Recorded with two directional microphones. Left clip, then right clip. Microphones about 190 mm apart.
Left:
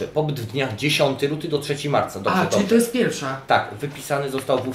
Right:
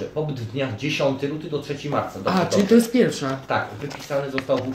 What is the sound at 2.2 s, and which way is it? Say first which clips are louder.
Speech: left 1 dB; 40° right (ahead or behind).